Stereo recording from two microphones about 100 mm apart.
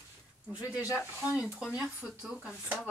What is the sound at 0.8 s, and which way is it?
Speech, 35° left (ahead or behind).